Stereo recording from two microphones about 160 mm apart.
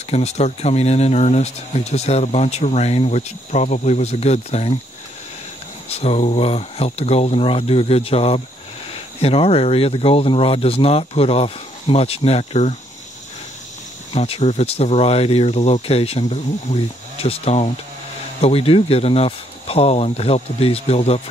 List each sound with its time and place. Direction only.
0.1 s speech: 40° left (ahead or behind)
5.9 s speech: 40° left (ahead or behind)
14.1 s speech: 40° left (ahead or behind)